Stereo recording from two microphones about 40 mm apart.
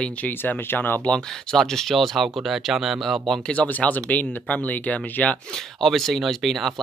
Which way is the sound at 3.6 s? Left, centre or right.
Left.